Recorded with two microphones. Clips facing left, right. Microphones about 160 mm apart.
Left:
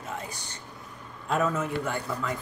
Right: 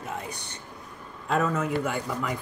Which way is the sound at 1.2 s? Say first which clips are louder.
Right 1 dB; centre (ahead or behind).